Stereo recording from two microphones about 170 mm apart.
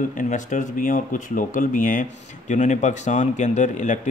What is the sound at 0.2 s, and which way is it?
Speech, 45° left (ahead or behind).